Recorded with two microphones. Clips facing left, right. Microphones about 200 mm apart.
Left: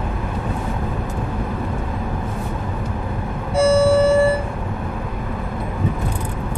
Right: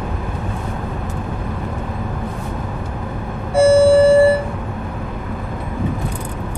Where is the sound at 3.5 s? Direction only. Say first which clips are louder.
Right 4 dB; 55° right (ahead or behind).